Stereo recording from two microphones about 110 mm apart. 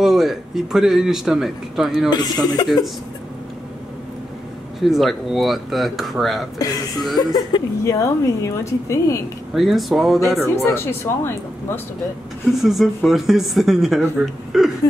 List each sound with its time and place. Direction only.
0.0 s speech: 5° right (ahead or behind)
2.0 s speech: 40° left (ahead or behind)
4.7 s speech: centre (ahead or behind)
6.6 s speech: 35° left (ahead or behind)
9.5 s speech: centre (ahead or behind)
10.5 s speech: 20° left (ahead or behind)
12.4 s speech: 5° right (ahead or behind)